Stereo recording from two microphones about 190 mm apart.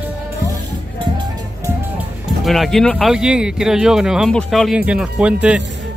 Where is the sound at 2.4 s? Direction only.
Centre (ahead or behind).